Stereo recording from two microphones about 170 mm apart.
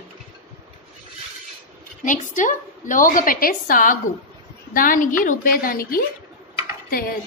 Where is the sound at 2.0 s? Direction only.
50° left (ahead or behind).